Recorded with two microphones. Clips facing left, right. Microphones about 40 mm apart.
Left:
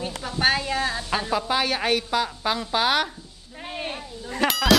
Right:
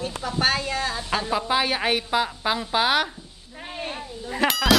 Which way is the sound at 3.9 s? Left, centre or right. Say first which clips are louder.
Right 1 dB; centre.